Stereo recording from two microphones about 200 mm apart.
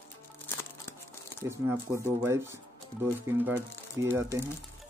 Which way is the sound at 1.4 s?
15° right (ahead or behind).